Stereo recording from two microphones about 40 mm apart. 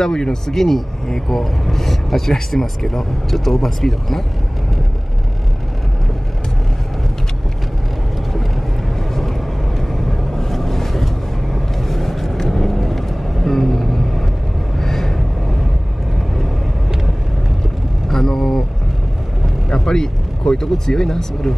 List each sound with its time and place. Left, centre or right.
0.0 s speech: centre
9.8 s vehicle: centre
18.0 s vehicle: centre
19.7 s speech: centre